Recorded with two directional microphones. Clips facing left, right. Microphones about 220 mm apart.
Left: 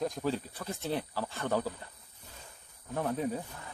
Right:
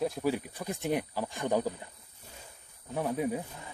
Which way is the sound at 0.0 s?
10° right (ahead or behind).